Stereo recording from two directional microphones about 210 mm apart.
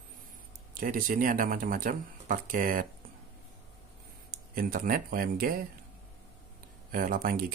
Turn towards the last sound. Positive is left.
turn(degrees=-45)  # may be behind; listen again after turning